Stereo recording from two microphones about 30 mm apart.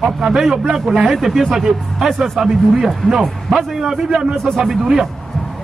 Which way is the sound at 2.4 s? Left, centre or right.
Centre.